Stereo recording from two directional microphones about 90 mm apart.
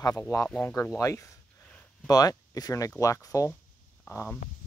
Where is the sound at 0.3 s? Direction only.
45° left (ahead or behind).